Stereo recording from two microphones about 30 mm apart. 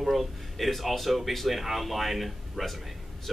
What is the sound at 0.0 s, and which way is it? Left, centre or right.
Speech, centre.